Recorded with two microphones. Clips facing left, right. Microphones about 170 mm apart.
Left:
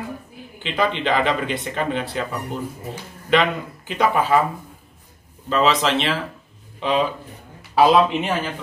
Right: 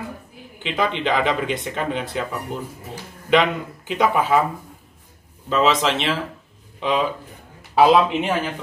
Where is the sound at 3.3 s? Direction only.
15° right (ahead or behind).